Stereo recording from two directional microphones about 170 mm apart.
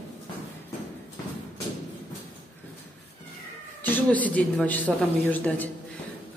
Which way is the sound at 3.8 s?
10° left (ahead or behind).